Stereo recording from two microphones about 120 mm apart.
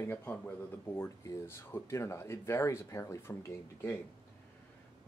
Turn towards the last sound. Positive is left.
turn(degrees=20)  # may be behind; listen again after turning